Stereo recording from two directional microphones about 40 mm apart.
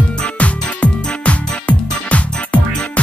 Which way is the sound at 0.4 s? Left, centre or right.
Left.